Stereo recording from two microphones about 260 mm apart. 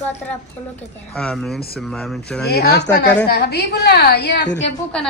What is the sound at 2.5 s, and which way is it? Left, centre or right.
A woman's voice, left.